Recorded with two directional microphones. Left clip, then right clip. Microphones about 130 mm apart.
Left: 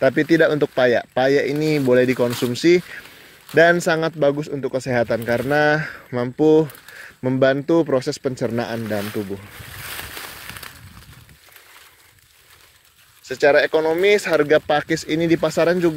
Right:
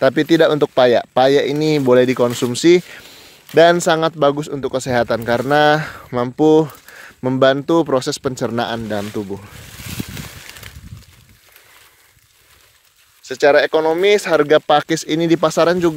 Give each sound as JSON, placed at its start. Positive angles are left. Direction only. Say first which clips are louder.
{"t": 0.0, "sound": "speech", "louder": "right 3 dB", "side_deg": -35}
{"t": 9.8, "sound": "boat", "louder": "right 1 dB", "side_deg": 5}
{"t": 13.2, "sound": "speech", "louder": "right 3 dB", "side_deg": -45}